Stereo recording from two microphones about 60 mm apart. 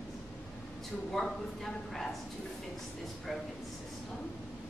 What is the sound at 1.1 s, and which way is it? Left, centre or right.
A woman's voice, centre.